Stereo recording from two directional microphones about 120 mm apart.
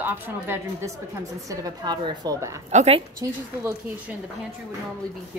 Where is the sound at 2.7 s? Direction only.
60° right (ahead or behind).